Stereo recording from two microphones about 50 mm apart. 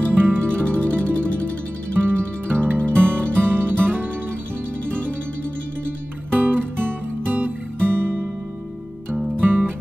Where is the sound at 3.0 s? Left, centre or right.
Right.